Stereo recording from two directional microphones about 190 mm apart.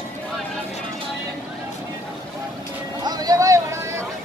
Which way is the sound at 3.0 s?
20° right (ahead or behind).